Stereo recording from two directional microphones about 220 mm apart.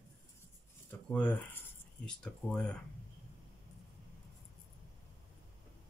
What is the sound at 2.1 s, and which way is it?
Speech, 5° left (ahead or behind).